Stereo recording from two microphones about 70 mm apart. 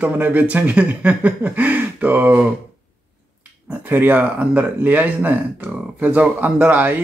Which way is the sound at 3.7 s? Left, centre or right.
Right.